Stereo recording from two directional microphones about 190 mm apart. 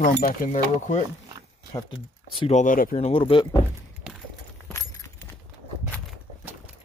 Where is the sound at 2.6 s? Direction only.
45° left (ahead or behind); by 3.6 s 25° left (ahead or behind).